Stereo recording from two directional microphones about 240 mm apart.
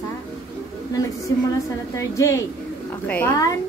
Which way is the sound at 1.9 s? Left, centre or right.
Centre.